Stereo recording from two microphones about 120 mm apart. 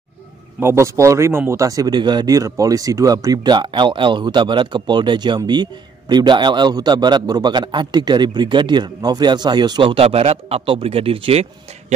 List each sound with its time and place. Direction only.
0.6 s a man's voice: 20° right (ahead or behind); by 11.4 s 50° right (ahead or behind)